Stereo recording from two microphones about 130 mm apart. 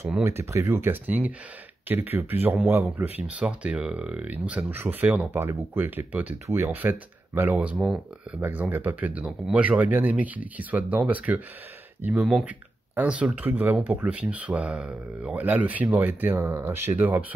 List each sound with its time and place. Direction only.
0.2 s speech: 20° right (ahead or behind)